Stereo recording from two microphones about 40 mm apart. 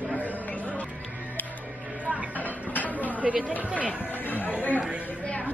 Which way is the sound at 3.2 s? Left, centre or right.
Right.